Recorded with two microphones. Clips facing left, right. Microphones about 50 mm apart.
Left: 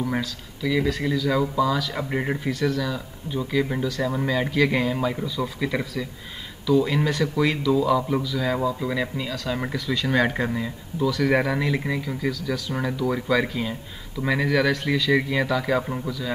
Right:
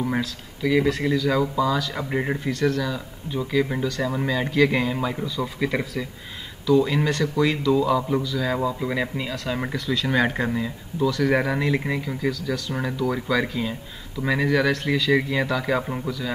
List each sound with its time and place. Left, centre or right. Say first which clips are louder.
0.6 s speech: right 3 dB; centre
0.8 s speech: right 2 dB; centre
6.7 s speech: right 1 dB; centre